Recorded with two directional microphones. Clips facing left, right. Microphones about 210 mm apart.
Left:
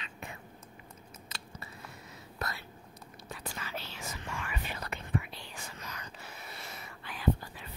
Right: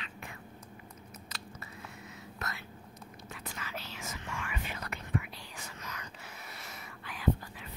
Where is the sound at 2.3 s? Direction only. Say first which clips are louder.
Left 4 dB; 35° left (ahead or behind).